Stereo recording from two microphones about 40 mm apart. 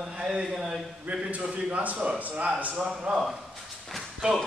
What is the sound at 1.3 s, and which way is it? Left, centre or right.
A man's voice, right.